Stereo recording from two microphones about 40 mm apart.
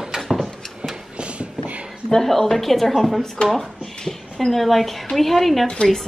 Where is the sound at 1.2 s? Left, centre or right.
Right.